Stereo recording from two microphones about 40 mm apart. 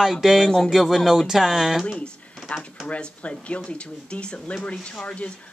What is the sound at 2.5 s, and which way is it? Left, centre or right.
Speech, left.